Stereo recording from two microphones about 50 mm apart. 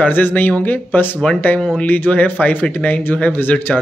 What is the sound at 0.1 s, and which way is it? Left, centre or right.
Speech, left.